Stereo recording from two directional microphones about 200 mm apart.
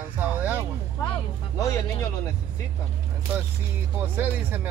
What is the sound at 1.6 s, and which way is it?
Music, 15° left (ahead or behind).